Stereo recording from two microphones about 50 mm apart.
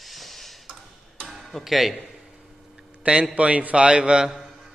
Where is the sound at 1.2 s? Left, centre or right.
Centre.